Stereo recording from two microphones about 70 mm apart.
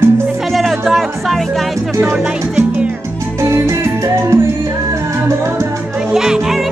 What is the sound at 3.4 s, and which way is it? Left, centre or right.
Music, right.